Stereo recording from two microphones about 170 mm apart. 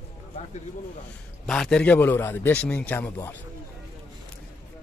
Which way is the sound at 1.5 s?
5° left (ahead or behind).